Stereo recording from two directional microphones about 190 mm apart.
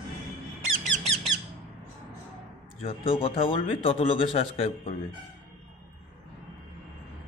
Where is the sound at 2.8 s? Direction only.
30° left (ahead or behind).